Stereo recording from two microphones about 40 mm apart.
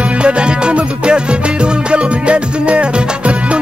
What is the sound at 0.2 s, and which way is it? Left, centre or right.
Music, right.